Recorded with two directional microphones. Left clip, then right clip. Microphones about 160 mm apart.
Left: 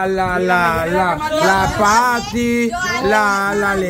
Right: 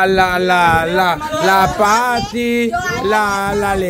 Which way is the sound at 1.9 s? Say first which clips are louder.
Even; 20° right (ahead or behind).